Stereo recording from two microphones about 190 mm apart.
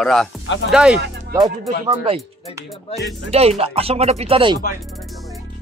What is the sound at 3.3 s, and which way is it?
Speech, 30° right (ahead or behind).